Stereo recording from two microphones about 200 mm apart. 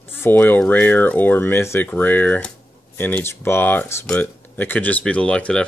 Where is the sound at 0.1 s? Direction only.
10° left (ahead or behind).